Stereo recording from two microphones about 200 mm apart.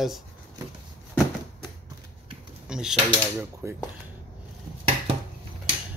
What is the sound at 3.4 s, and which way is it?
Speech, 10° right (ahead or behind).